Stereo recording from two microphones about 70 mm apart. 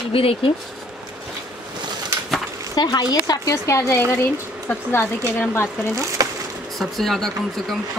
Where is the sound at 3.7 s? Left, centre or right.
Left.